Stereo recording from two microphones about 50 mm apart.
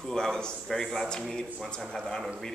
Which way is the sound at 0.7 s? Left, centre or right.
Centre.